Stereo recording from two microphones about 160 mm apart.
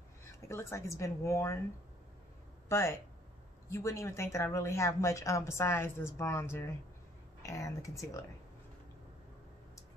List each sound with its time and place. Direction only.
0.4 s speech: 15° left (ahead or behind)
2.7 s speech: 15° left (ahead or behind)